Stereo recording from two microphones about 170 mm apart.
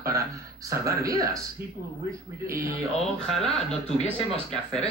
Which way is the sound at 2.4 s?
15° right (ahead or behind).